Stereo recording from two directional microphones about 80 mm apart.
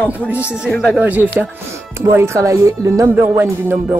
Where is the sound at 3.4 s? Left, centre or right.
Right.